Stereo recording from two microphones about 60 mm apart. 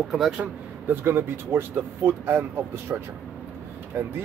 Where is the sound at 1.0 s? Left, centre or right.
Right.